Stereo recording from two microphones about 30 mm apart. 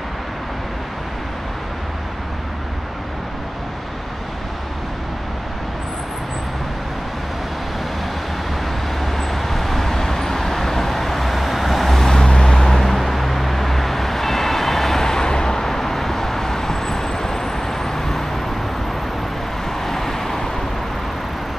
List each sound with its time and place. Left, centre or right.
9.0 s vehicle: centre
12.1 s vehicle: left
12.6 s vehicle: centre
19.8 s vehicle: centre